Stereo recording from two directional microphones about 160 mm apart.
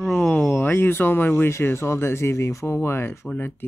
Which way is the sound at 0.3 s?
15° left (ahead or behind).